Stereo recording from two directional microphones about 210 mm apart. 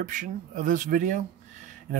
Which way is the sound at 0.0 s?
40° right (ahead or behind).